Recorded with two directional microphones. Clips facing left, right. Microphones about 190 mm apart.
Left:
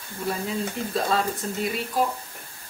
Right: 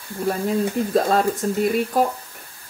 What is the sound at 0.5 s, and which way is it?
Speech, 45° right (ahead or behind).